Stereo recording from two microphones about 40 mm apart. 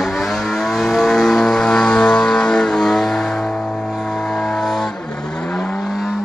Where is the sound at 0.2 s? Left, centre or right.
Centre.